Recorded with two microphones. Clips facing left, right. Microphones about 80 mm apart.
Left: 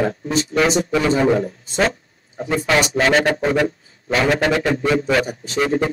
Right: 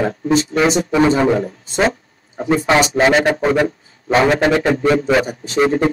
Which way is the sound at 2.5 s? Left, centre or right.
Right.